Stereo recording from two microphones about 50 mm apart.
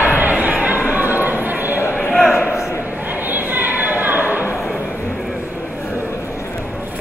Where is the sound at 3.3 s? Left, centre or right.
Right.